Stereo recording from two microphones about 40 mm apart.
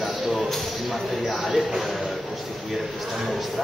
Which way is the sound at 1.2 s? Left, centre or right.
Centre.